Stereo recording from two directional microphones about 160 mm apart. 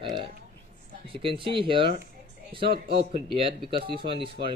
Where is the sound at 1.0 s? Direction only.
35° right (ahead or behind).